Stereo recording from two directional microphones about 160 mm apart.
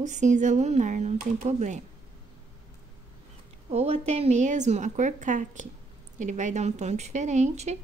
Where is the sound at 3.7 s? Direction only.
40° right (ahead or behind).